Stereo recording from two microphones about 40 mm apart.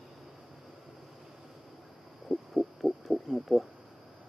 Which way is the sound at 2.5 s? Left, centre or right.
Centre.